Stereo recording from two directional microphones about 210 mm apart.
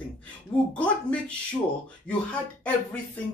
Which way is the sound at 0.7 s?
5° left (ahead or behind).